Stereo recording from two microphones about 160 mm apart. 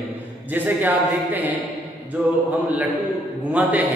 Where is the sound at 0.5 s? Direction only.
10° right (ahead or behind).